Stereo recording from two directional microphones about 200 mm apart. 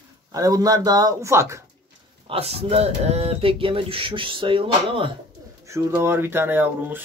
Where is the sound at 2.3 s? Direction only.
30° right (ahead or behind).